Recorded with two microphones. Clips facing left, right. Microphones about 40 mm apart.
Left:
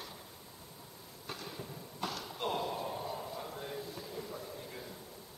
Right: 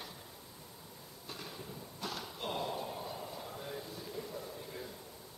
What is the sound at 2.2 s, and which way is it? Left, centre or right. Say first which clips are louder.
Slam: left 5 dB; centre.